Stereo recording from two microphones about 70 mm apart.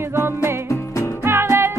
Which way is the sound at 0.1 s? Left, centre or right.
Right.